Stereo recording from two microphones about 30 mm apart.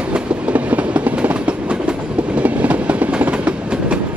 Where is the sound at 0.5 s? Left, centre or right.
Right.